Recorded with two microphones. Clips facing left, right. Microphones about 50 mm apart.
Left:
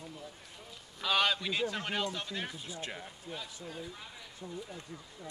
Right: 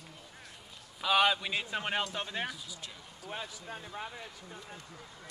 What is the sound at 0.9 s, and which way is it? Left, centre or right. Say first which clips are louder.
A man's voice: right 3 dB; centre.